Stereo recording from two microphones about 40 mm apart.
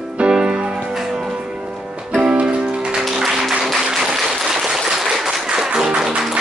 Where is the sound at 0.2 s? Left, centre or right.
Right.